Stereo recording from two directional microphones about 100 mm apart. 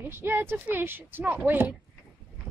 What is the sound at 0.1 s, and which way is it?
Speech, 25° right (ahead or behind).